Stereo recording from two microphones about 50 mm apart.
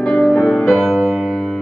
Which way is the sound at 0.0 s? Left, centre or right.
Centre.